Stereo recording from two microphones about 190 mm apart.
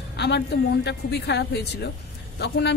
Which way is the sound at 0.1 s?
65° left (ahead or behind).